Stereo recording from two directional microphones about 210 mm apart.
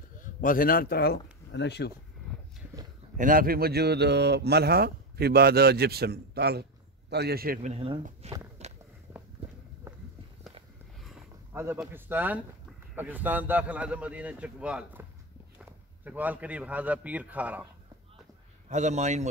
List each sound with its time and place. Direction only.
0.2 s speech: 40° left (ahead or behind)
3.2 s speech: 40° right (ahead or behind)
7.7 s a man's voice: 25° right (ahead or behind)
9.1 s walk: 10° right (ahead or behind)
11.5 s a man's voice: 10° right (ahead or behind)
18.7 s a man's voice: 35° right (ahead or behind)